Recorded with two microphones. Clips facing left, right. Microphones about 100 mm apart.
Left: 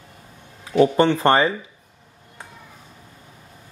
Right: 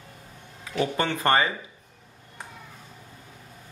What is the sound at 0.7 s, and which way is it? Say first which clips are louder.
Speech: left 10 dB; 30° left (ahead or behind).